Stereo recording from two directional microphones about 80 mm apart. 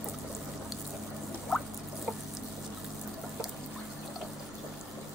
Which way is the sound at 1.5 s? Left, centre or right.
Centre.